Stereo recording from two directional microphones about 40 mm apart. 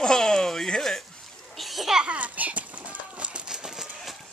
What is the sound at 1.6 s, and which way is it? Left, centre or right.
Splash, centre.